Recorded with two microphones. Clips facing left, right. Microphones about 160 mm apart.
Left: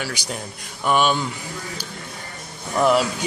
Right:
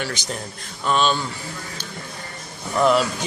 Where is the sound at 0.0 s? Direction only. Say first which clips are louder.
Right 1 dB; 10° left (ahead or behind).